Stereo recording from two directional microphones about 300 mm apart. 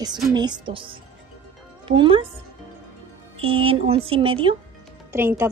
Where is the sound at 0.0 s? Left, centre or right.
Centre.